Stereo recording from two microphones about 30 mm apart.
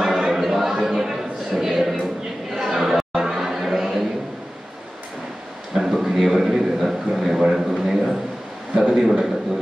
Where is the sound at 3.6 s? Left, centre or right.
Centre.